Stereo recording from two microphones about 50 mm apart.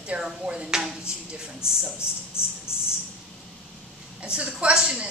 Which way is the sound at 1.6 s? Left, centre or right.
Left.